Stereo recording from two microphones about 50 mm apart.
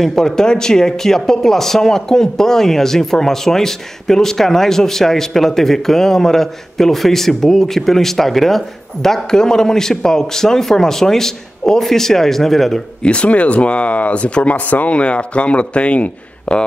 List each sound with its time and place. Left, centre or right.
0.0 s speech: centre
13.0 s speech: left